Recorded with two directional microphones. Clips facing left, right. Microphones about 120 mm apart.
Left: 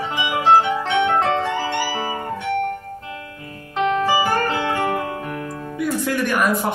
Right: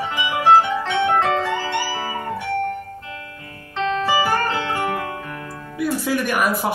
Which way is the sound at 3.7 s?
15° left (ahead or behind).